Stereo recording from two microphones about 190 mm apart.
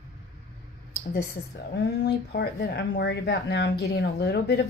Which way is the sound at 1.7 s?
60° left (ahead or behind).